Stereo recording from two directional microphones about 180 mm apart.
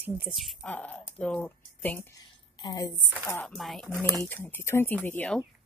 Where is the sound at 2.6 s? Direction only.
20° left (ahead or behind).